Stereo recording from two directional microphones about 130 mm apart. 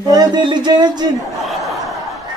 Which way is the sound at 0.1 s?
35° right (ahead or behind).